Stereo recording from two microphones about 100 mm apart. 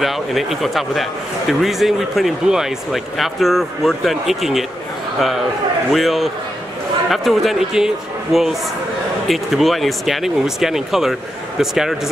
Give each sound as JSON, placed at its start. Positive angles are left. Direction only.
{"t": 0.0, "sound": "speech", "side_deg": 0}
{"t": 5.9, "sound": "speech", "side_deg": 0}